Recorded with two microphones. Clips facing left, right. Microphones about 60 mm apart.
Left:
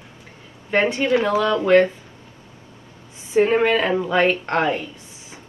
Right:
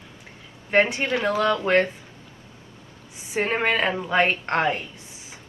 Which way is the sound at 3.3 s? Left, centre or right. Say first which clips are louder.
Left 6 dB; right.